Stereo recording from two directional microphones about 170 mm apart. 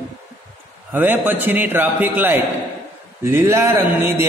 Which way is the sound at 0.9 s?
10° right (ahead or behind).